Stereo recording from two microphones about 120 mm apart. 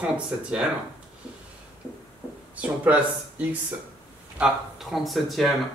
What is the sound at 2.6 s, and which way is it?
Speech, 10° right (ahead or behind).